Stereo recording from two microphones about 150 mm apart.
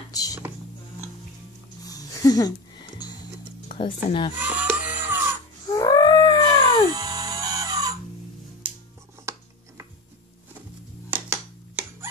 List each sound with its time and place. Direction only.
0.1 s music: 25° left (ahead or behind)
1.9 s music: 25° left (ahead or behind)
3.8 s speech: 35° left (ahead or behind)
4.4 s music: 10° right (ahead or behind)
5.7 s whale vocalization: 25° left (ahead or behind)
6.9 s music: 25° right (ahead or behind)
9.3 s a sound: 20° right (ahead or behind)
11.1 s a sound: 10° right (ahead or behind)